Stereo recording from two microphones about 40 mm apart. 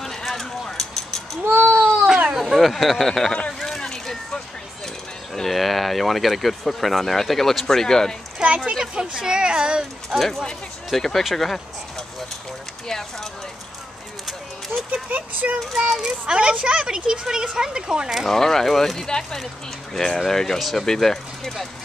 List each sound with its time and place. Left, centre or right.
0.0 s clip-clop: centre
0.7 s a sound: centre
1.4 s speech: right
1.8 s cat: centre
2.3 s speech: centre
3.5 s a sound: centre
4.8 s speech: centre
8.4 s a child's voice: right
10.0 s speech: centre
12.8 s speech: centre
15.0 s speech: right
15.8 s a child's voice: centre
18.3 s speech: centre
20.8 s speech: centre